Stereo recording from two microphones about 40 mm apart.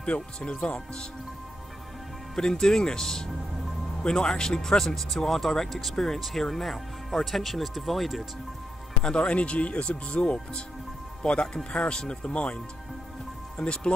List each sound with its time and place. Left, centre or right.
0.0 s speech: left
2.3 s speech: centre
9.0 s speech: left
13.6 s speech: left